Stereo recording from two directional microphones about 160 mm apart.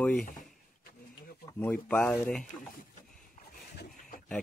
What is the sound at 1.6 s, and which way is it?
Speech, 10° left (ahead or behind).